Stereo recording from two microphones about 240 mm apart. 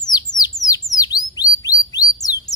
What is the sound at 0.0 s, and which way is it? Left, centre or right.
Bird, centre.